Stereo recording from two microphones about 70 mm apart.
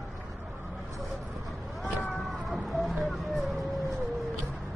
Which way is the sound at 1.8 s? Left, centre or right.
Centre.